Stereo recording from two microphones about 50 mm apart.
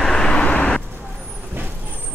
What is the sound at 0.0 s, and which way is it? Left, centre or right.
Vehicle, centre.